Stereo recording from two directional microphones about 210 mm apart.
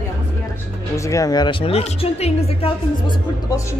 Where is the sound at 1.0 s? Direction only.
15° left (ahead or behind).